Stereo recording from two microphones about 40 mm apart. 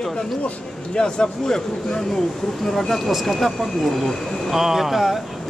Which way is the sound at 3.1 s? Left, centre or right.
Centre.